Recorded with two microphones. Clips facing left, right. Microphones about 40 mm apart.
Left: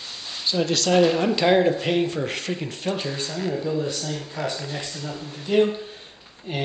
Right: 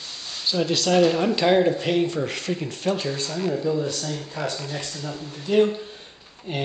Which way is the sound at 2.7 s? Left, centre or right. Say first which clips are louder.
Right 2 dB; left.